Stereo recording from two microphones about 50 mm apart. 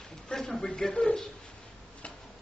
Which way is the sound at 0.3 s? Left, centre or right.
Centre.